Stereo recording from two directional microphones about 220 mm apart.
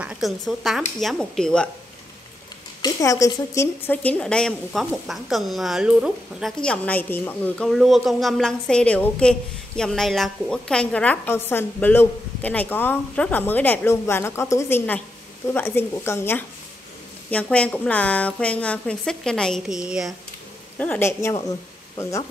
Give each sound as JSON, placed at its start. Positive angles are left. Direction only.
{"t": 0.0, "sound": "a woman's voice", "side_deg": 0}
{"t": 2.8, "sound": "a woman's voice", "side_deg": 15}